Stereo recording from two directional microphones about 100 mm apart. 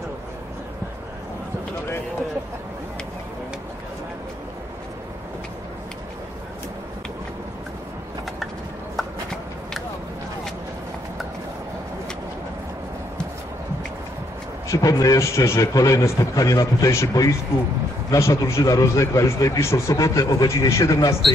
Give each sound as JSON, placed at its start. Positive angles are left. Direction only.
{"t": 8.9, "sound": "walk", "side_deg": 0}
{"t": 14.7, "sound": "speech", "side_deg": 35}